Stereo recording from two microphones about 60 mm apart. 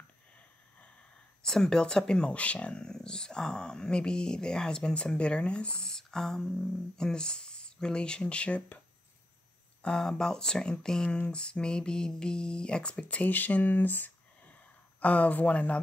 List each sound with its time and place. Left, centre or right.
1.4 s speech: centre
9.8 s speech: centre